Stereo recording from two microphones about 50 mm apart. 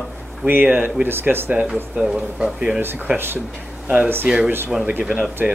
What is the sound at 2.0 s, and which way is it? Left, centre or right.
Speech, centre.